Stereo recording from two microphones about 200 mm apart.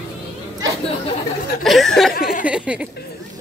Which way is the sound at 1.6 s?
Centre (ahead or behind).